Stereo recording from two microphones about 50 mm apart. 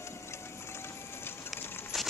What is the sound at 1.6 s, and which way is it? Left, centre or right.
Coin, left.